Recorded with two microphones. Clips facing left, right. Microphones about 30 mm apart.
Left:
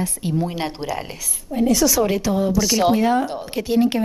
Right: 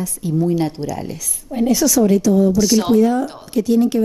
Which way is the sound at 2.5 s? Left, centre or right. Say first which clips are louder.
Right 2 dB; centre.